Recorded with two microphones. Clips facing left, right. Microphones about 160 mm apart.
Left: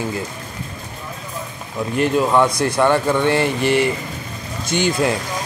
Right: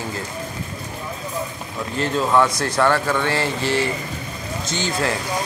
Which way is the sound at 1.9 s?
15° left (ahead or behind).